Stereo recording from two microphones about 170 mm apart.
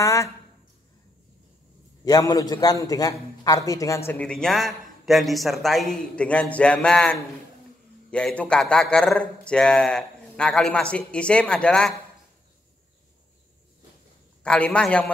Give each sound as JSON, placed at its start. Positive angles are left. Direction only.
{"t": 0.0, "sound": "speech", "side_deg": 20}
{"t": 2.0, "sound": "a man's voice", "side_deg": 20}
{"t": 14.4, "sound": "a man's voice", "side_deg": 5}